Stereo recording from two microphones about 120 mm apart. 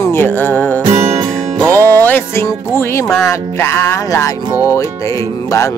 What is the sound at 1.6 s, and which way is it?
Music, 25° right (ahead or behind).